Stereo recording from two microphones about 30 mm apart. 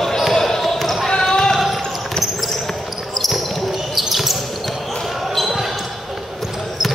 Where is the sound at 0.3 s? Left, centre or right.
Centre.